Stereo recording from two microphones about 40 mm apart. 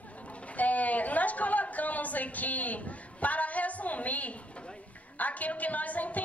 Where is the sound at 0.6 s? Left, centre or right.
Left.